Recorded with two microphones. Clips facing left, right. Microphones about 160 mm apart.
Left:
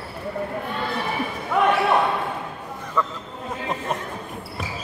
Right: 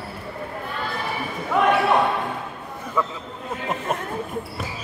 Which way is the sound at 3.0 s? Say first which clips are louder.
Even; 5° right (ahead or behind).